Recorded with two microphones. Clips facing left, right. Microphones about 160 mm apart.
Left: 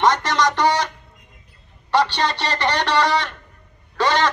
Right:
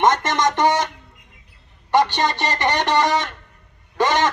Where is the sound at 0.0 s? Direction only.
20° right (ahead or behind).